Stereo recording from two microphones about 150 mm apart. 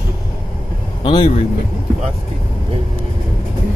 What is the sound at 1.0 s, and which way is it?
Speech, 35° left (ahead or behind).